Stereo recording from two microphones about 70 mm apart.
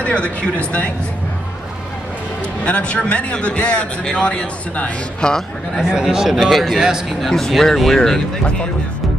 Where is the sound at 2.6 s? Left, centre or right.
Centre.